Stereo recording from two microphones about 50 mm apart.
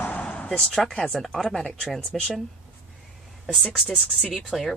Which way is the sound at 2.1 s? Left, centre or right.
Left.